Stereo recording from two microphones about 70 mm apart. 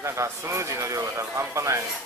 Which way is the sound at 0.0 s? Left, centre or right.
Right.